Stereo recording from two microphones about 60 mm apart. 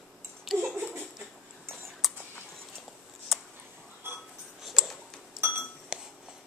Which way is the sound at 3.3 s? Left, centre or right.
Centre.